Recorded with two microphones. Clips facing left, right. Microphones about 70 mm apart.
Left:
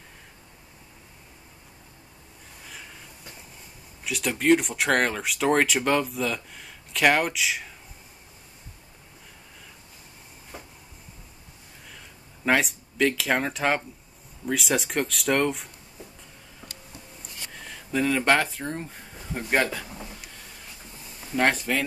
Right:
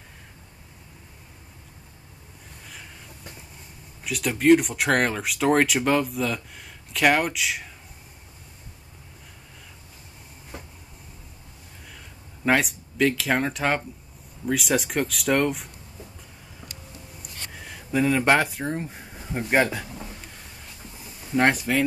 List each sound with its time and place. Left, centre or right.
2.6 s a sound: centre
4.0 s speech: centre
12.4 s speech: centre
17.2 s a sound: centre
19.6 s speech: centre
21.4 s speech: centre